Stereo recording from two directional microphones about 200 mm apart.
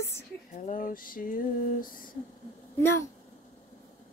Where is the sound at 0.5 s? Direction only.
40° left (ahead or behind).